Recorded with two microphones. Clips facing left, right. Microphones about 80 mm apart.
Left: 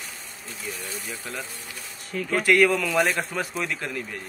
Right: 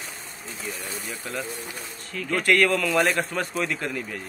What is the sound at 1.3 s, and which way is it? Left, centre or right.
A man's voice, centre.